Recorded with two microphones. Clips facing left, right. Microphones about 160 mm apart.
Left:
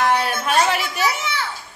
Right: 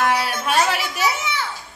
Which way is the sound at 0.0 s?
5° right (ahead or behind).